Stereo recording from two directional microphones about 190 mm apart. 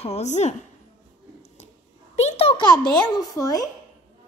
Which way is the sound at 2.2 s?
35° left (ahead or behind).